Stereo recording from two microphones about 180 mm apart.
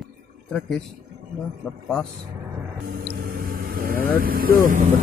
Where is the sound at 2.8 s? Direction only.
50° right (ahead or behind).